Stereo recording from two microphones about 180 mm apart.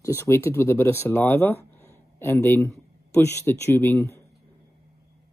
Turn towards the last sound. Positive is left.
turn(degrees=15)  # may be behind; listen again after turning